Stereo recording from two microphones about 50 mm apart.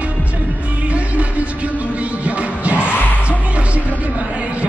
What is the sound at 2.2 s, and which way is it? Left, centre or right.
Music, right.